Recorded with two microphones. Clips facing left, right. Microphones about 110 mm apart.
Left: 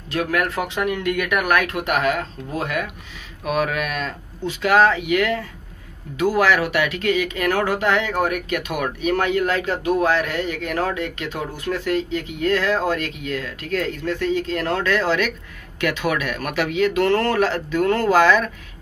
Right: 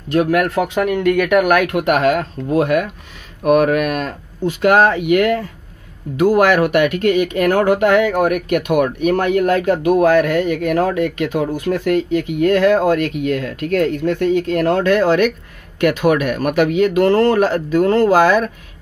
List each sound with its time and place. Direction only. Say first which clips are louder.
0.1 s speech: right 7 dB; 50° right (ahead or behind)
3.4 s speech: right 9 dB; 50° right (ahead or behind)